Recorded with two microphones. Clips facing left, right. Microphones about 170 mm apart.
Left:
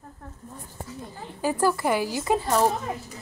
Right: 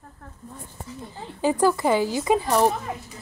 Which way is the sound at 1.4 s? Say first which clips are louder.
Right 3 dB; 20° right (ahead or behind).